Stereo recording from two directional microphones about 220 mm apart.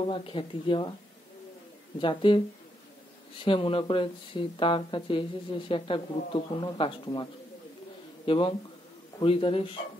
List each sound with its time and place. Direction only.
0.1 s speech: 25° left (ahead or behind)
2.0 s speech: 25° left (ahead or behind)
3.4 s speech: 25° left (ahead or behind)
8.3 s speech: 25° left (ahead or behind)